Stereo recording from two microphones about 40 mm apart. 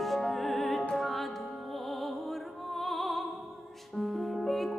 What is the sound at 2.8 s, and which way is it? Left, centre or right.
Music, centre.